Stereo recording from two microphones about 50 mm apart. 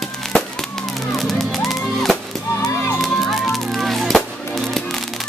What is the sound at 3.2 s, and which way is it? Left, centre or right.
Music, centre.